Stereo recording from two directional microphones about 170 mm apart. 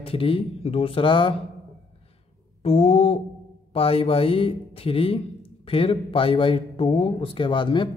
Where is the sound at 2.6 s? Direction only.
35° left (ahead or behind).